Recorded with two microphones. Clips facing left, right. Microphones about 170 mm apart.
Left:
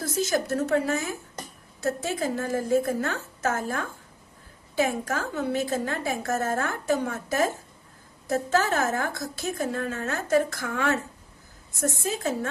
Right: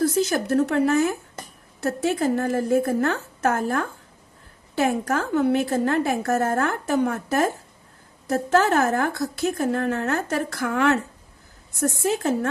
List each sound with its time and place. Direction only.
0.1 s a woman's voice: 60° right (ahead or behind)